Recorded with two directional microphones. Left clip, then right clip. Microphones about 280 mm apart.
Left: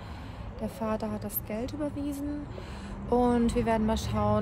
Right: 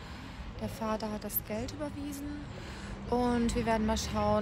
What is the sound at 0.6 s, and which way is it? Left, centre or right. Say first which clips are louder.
A woman's voice: left 3 dB; centre.